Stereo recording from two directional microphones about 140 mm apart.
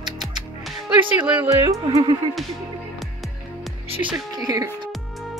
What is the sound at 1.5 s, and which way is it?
Speech, 25° right (ahead or behind).